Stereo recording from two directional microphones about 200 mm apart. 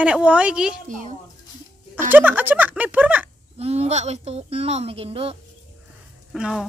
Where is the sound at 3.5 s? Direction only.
30° right (ahead or behind).